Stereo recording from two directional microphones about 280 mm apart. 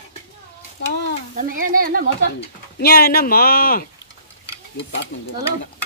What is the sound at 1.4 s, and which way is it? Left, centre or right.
Speech, right.